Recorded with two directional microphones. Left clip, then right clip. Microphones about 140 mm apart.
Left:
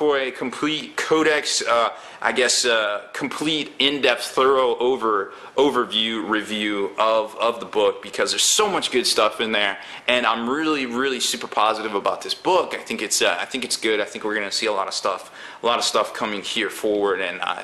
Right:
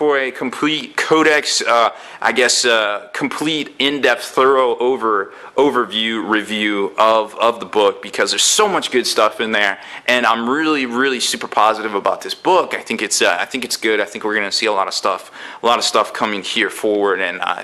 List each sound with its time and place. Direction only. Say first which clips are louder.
0.0 s speech: right 4 dB; 15° right (ahead or behind)